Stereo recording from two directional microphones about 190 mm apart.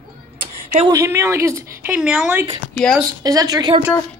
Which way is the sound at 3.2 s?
20° right (ahead or behind).